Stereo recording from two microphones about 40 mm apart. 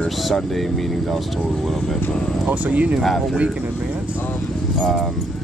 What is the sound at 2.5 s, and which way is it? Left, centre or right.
Speech, right.